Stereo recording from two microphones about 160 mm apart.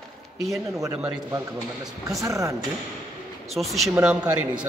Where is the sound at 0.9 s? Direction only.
10° right (ahead or behind).